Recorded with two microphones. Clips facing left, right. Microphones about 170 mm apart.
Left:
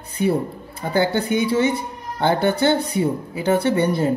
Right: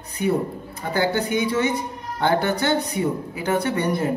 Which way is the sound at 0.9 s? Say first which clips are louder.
Left 2 dB; 30° left (ahead or behind).